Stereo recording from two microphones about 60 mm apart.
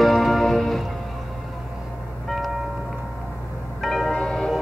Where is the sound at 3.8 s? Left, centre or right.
Centre.